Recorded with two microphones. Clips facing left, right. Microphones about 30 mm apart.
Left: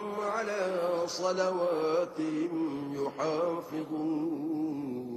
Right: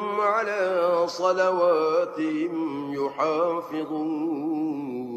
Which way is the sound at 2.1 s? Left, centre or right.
Right.